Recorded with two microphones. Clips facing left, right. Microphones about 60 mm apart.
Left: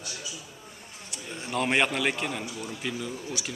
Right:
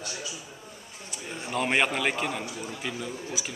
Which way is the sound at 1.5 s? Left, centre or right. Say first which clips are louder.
Even; centre.